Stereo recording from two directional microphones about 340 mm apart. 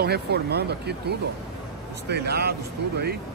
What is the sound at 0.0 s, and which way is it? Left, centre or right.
Speech, right.